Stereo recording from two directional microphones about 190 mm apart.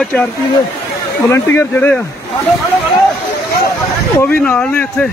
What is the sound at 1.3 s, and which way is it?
Speech, 15° left (ahead or behind).